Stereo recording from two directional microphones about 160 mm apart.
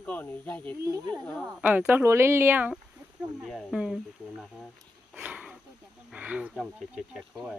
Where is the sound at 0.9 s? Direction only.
25° right (ahead or behind).